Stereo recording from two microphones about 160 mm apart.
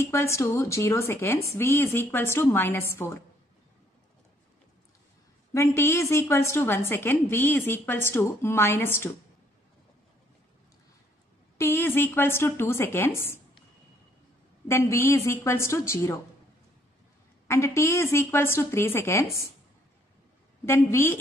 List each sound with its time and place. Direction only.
0.0 s a woman's voice: 15° left (ahead or behind)
5.5 s a woman's voice: 15° left (ahead or behind)
11.5 s a woman's voice: 15° left (ahead or behind)
14.7 s a woman's voice: 15° left (ahead or behind)
17.5 s a woman's voice: 20° left (ahead or behind)
20.6 s a woman's voice: 15° left (ahead or behind)